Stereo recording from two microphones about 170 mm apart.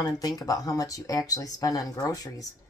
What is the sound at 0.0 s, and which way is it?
Speech, 20° left (ahead or behind).